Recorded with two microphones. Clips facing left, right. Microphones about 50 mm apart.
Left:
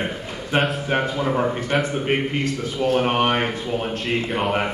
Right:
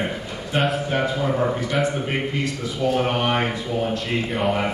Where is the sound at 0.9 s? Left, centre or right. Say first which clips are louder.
Left 1 dB; left.